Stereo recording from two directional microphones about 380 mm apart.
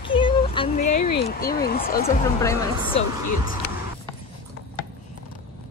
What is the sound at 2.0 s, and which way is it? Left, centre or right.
Speech, centre.